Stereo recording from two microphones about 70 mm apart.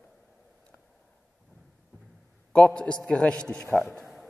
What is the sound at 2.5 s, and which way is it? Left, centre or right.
A man's voice, centre.